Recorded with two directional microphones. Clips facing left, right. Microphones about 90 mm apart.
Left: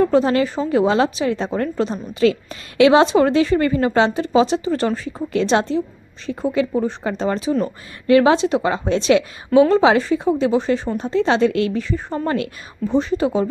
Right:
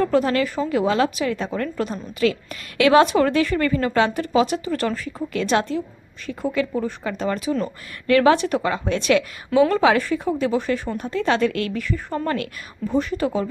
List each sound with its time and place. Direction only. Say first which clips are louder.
0.0 s a woman's voice: left 3 dB; 25° left (ahead or behind)